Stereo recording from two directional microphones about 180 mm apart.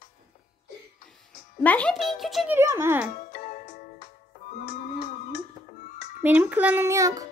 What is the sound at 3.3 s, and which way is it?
Music, 45° left (ahead or behind).